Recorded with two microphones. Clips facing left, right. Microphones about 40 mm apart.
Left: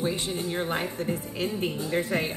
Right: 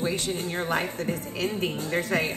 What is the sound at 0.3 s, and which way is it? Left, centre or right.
A woman's voice, right.